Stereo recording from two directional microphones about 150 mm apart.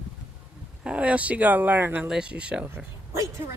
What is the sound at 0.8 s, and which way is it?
Speech, 10° right (ahead or behind).